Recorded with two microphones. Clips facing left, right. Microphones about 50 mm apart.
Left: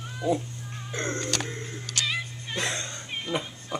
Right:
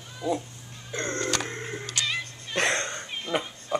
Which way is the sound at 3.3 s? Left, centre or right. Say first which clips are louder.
Right 4 dB; centre.